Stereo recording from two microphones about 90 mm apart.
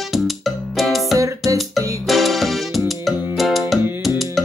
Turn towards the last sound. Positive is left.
turn(degrees=0)  # may be behind; listen again after turning